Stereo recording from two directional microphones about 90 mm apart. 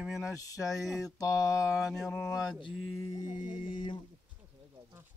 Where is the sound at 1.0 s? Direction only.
40° left (ahead or behind).